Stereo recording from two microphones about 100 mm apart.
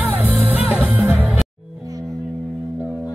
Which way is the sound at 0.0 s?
20° right (ahead or behind).